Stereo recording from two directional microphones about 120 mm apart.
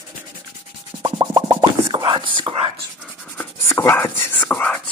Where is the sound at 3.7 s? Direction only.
20° left (ahead or behind).